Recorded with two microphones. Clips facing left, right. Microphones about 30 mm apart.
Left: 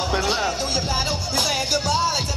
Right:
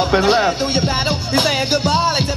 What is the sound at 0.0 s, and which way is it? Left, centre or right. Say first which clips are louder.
Music: right 8 dB; right.